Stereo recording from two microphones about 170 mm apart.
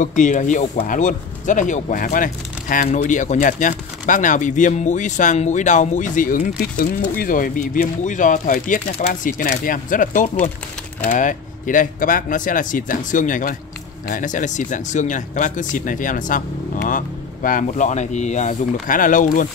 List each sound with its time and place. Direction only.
0.0 s speech: 50° left (ahead or behind)